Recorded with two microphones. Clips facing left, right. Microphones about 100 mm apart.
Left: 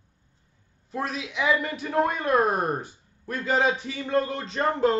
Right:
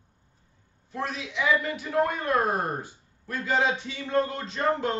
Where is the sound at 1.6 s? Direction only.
25° left (ahead or behind).